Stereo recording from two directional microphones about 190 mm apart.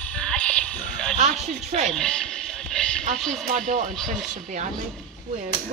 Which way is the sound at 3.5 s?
40° right (ahead or behind).